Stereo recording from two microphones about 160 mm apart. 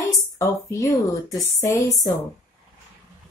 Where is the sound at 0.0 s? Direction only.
20° left (ahead or behind).